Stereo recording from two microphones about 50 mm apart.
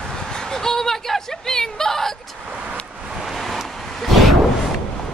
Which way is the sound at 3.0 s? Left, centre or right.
Centre.